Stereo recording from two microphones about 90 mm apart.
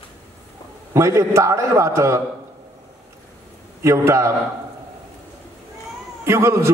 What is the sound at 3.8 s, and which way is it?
Speech, 30° right (ahead or behind).